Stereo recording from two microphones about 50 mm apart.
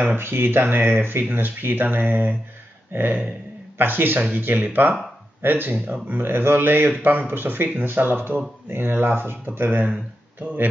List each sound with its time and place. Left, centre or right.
0.1 s speech: right
2.9 s a sound: right
3.7 s speech: right